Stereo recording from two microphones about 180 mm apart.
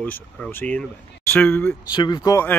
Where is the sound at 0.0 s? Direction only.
10° left (ahead or behind).